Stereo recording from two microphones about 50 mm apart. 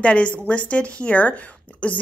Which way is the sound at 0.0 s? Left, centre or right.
Left.